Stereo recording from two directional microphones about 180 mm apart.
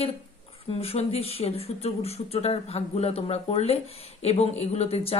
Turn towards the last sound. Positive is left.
turn(degrees=35)  # may be behind; listen again after turning